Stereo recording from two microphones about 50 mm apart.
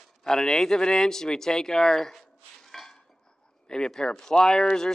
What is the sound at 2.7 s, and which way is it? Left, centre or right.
Dishes, centre.